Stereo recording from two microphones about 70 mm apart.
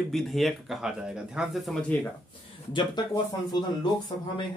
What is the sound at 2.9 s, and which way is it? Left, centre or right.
Speech, left.